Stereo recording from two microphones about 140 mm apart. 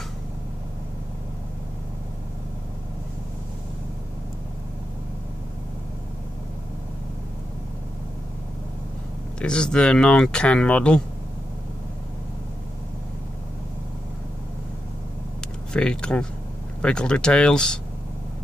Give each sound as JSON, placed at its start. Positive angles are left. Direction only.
{"t": 9.4, "sound": "speech", "side_deg": 5}
{"t": 15.7, "sound": "speech", "side_deg": 5}